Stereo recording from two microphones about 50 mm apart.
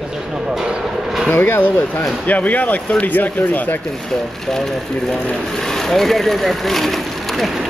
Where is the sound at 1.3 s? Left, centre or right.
Left.